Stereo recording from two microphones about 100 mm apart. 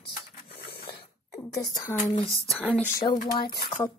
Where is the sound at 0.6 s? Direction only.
55° left (ahead or behind).